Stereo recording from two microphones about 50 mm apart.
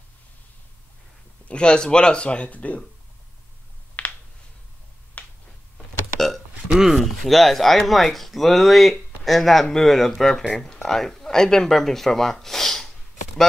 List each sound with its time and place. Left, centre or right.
1.5 s speech: centre
4.0 s a sound: left
5.2 s finger snapping: left
6.1 s burping: centre
6.7 s a sound: centre
7.0 s speech: centre